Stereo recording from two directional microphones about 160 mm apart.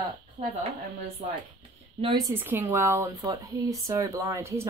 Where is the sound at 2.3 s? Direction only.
15° right (ahead or behind).